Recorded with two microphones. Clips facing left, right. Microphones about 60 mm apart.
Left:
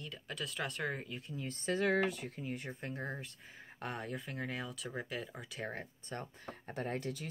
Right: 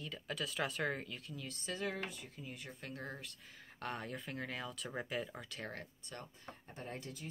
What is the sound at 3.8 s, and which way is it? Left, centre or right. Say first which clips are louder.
Speech: left 2 dB; centre.